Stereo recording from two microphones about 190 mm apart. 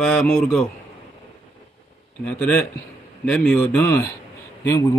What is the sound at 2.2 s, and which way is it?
Speech, 5° left (ahead or behind).